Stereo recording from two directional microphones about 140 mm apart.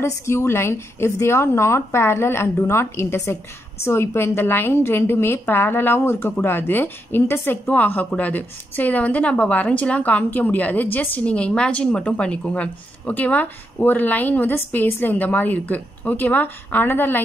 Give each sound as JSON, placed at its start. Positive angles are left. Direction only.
{"t": 0.0, "sound": "a woman's voice", "side_deg": 20}